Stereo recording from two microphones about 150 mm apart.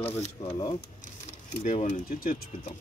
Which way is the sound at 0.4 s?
50° left (ahead or behind).